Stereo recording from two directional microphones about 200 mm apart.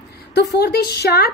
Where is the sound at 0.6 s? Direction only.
50° left (ahead or behind).